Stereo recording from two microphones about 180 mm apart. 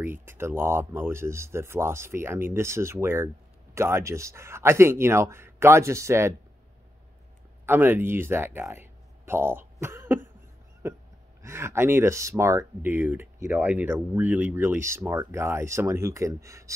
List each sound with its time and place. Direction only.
0.0 s speech: 10° right (ahead or behind)
7.6 s speech: 10° right (ahead or behind)
10.8 s a sound: 15° right (ahead or behind)
11.4 s speech: 15° right (ahead or behind)